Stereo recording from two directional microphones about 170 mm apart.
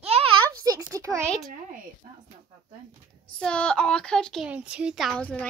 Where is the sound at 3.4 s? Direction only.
5° left (ahead or behind).